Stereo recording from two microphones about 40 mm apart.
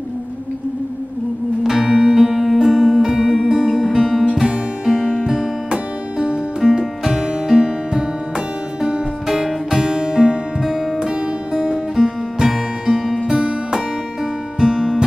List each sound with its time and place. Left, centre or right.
1.6 s music: centre
6.1 s music: right
9.3 s music: centre
14.6 s music: centre